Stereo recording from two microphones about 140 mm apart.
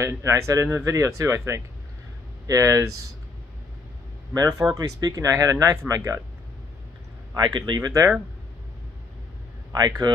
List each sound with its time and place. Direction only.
0.0 s speech: 20° right (ahead or behind)
4.3 s speech: 25° right (ahead or behind)
7.3 s speech: 30° right (ahead or behind)
9.7 s speech: 30° right (ahead or behind)